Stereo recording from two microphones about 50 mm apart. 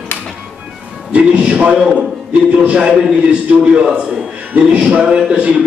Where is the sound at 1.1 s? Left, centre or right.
Right.